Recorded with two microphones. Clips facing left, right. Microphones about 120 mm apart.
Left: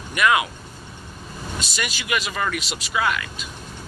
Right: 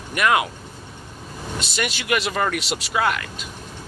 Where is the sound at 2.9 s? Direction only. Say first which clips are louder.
Right 1 dB; 50° right (ahead or behind).